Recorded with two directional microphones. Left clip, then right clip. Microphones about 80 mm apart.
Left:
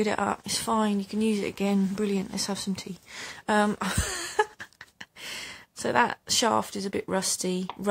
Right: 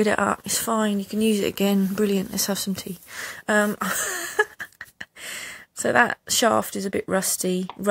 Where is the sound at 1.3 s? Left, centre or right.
Right.